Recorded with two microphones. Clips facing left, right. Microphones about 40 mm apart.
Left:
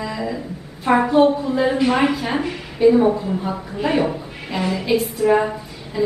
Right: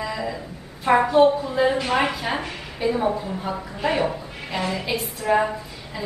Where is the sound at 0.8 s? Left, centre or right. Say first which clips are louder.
Left 1 dB; centre.